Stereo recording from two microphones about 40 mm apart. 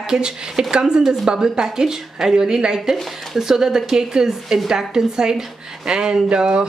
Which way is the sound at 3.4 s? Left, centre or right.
Centre.